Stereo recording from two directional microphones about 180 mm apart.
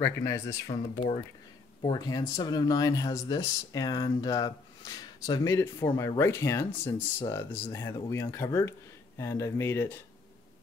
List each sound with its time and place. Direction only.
0.0 s speech: 15° left (ahead or behind)